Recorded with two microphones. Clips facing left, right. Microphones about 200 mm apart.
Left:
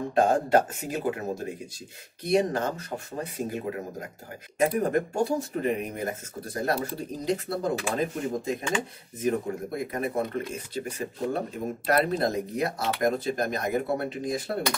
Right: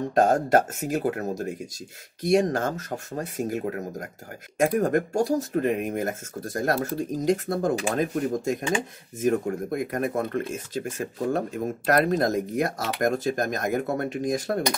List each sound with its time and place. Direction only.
0.1 s speech: 45° right (ahead or behind)